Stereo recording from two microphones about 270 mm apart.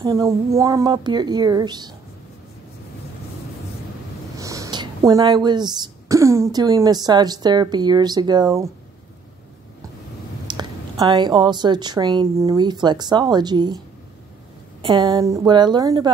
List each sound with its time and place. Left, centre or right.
0.0 s a woman's voice: centre
4.4 s speech: centre
10.4 s a woman's voice: centre
14.8 s a woman's voice: centre